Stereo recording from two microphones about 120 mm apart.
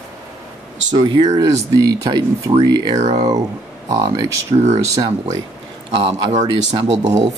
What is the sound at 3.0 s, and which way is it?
Speech, 70° right (ahead or behind).